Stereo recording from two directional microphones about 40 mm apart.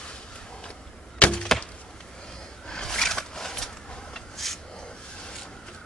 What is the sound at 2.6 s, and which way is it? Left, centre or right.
Rub, centre.